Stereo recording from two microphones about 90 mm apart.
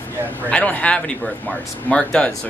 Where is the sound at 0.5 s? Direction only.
15° left (ahead or behind).